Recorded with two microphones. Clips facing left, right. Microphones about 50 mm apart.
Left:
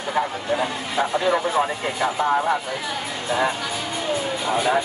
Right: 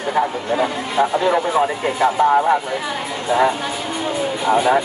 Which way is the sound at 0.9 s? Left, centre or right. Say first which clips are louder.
Right 4 dB; centre.